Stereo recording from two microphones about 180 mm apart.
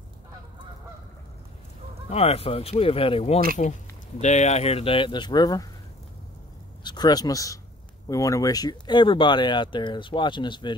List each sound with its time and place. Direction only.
2.0 s speech: 35° left (ahead or behind)
3.6 s speech: 45° left (ahead or behind); by 5.7 s 20° left (ahead or behind)
6.8 s speech: 25° left (ahead or behind)